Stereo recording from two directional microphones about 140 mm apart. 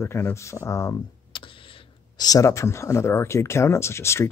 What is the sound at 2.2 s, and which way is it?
Speech, 25° left (ahead or behind).